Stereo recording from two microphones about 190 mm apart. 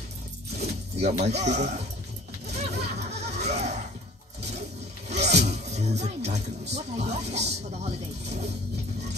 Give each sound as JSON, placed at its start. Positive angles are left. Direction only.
{"t": 0.6, "sound": "speech", "side_deg": -35}
{"t": 2.4, "sound": "a sound", "side_deg": -35}
{"t": 5.1, "sound": "zipper", "side_deg": -35}
{"t": 6.7, "sound": "speech", "side_deg": -35}